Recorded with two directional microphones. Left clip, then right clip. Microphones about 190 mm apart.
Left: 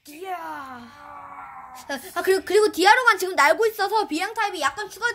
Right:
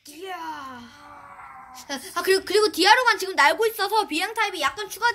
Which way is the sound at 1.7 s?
45° left (ahead or behind).